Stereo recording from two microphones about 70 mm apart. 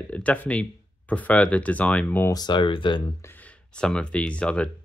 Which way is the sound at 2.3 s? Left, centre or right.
Left.